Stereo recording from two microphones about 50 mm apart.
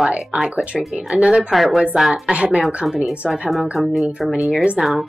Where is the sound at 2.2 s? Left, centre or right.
Centre.